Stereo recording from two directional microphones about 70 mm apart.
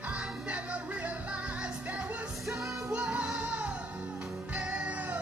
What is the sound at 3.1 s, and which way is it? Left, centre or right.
Music, centre.